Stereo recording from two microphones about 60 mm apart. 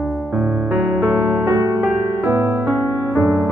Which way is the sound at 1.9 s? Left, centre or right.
Right.